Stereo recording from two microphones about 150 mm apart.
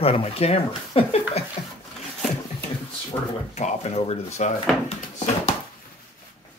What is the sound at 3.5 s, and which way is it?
Speech, 50° left (ahead or behind).